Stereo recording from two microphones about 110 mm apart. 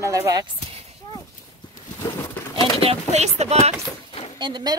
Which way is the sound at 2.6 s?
60° right (ahead or behind).